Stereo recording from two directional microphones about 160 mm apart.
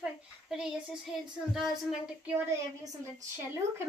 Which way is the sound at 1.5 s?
5° right (ahead or behind).